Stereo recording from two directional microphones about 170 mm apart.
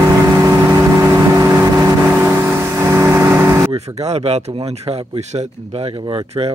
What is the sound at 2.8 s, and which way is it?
Vehicle, 15° right (ahead or behind).